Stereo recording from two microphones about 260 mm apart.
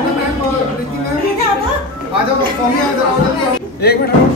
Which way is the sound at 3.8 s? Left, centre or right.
Left.